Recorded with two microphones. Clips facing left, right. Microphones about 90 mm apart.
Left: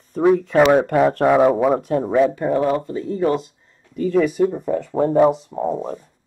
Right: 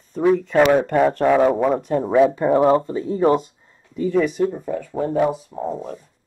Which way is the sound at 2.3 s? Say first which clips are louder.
Right 3 dB; 25° right (ahead or behind).